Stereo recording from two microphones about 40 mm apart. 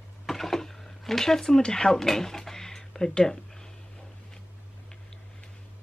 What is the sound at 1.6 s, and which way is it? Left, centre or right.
Speech, centre.